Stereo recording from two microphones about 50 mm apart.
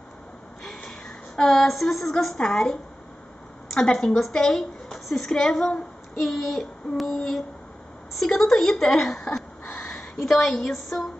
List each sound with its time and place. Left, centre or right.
0.7 s a sound: centre
2.3 s a woman's voice: centre
6.2 s child singing: centre
8.1 s speech: centre